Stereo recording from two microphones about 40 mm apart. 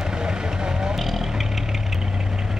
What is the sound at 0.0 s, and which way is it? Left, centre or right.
Vehicle, centre.